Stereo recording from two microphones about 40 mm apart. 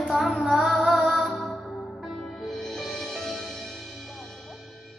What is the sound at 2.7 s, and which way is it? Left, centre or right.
Music, centre.